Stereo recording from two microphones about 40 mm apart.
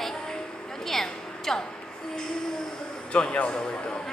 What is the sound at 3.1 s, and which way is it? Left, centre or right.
Speech, left.